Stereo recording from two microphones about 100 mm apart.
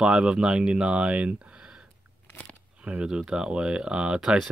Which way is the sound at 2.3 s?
15° left (ahead or behind).